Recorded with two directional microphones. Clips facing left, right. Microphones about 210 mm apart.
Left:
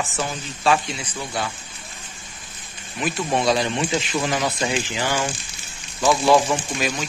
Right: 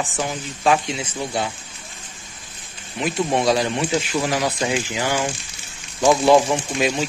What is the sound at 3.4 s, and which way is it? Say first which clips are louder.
Speech: even; 10° right (ahead or behind).